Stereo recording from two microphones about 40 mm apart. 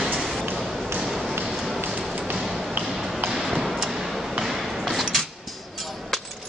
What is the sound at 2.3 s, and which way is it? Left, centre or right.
Ping, centre.